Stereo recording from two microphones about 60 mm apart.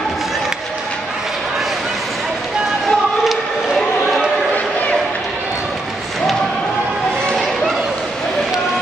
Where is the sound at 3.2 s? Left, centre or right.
Centre.